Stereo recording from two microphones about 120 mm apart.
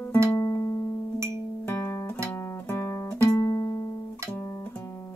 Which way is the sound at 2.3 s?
20° left (ahead or behind).